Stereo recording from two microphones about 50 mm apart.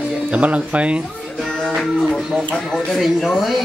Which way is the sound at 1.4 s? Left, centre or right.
Centre.